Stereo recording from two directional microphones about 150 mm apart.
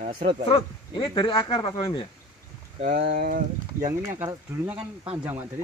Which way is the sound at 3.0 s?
90° right.